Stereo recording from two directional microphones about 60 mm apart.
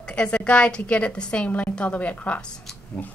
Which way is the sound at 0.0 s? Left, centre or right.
Centre.